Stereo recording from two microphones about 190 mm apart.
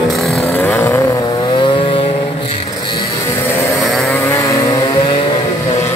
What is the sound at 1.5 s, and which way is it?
Vehicle, 25° left (ahead or behind).